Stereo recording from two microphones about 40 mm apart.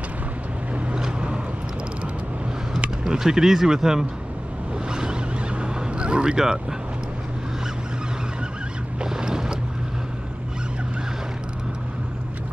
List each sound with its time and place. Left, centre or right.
0.9 s boat: right
3.0 s speech: centre
5.6 s vehicle: right
9.0 s boat: centre